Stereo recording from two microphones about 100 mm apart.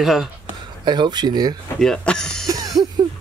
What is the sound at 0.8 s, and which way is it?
Speech, 50° right (ahead or behind).